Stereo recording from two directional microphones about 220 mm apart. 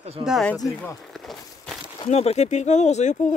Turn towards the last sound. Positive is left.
turn(degrees=35)  # may be behind; listen again after turning